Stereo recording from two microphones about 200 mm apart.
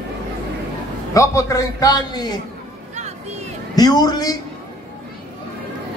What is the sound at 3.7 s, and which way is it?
Speech, 20° left (ahead or behind).